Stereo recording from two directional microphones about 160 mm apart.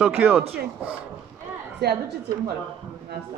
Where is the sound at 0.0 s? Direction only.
10° right (ahead or behind).